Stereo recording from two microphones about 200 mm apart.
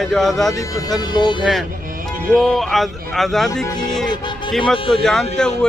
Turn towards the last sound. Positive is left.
turn(degrees=5)  # may be behind; listen again after turning